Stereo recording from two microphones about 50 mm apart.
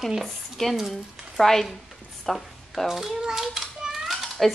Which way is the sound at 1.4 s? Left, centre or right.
Centre.